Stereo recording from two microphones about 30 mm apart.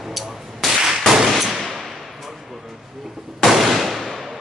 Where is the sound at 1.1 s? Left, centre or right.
Centre.